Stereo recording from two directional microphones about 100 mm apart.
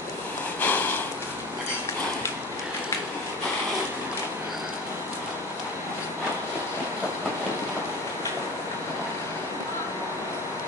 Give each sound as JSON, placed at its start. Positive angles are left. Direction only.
{"t": 0.6, "sound": "sniff", "side_deg": 20}